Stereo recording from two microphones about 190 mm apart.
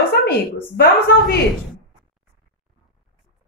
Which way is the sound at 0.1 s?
55° left (ahead or behind).